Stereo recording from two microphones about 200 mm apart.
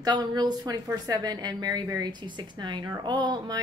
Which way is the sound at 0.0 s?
20° right (ahead or behind).